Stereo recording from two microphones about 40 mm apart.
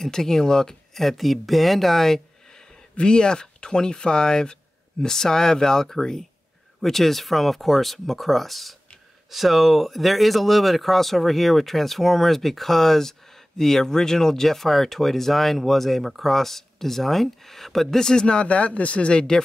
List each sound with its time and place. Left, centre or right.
0.0 s speech: centre
18.2 s a man's voice: left